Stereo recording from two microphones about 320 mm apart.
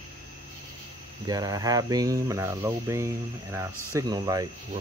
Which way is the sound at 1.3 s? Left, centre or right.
Centre.